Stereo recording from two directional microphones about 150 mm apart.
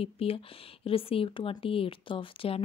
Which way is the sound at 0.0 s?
40° left (ahead or behind).